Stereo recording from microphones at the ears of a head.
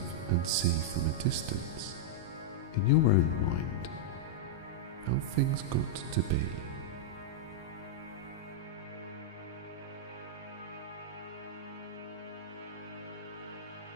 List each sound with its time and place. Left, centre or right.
0.3 s speech: right
2.7 s speech: left
5.0 s speech: right